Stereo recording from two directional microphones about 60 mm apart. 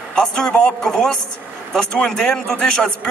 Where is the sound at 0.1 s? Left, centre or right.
Centre.